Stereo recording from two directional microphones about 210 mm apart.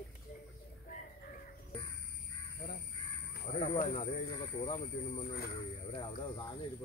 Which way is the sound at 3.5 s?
35° left (ahead or behind).